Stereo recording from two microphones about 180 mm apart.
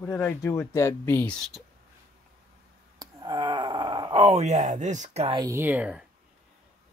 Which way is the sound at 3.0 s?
25° right (ahead or behind).